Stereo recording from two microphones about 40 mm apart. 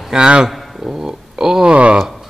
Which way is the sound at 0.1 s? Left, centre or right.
Right.